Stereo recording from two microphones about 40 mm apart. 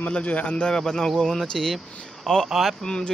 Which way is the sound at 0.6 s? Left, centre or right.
Centre.